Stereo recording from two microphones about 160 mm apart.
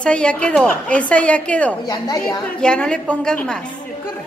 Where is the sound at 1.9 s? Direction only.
25° left (ahead or behind).